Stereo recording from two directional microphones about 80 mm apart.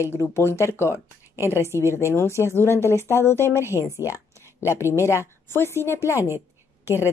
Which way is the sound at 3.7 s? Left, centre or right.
Left.